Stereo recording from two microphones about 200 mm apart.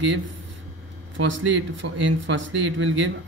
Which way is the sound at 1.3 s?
70° right (ahead or behind).